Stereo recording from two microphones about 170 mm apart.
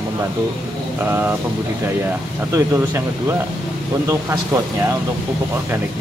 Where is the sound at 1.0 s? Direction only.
10° right (ahead or behind).